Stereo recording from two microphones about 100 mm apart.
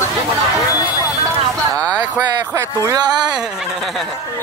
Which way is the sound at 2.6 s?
40° right (ahead or behind).